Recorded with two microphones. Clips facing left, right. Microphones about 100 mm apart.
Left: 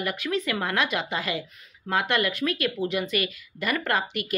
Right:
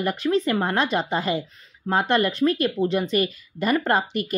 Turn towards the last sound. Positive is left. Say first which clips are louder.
# right 5 dB
turn(degrees=-35)  # may be behind; listen again after turning